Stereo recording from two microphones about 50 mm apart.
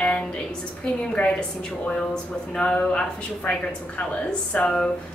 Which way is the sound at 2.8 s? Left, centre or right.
Left.